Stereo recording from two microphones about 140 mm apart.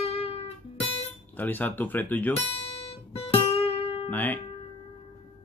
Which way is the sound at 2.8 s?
45° left (ahead or behind).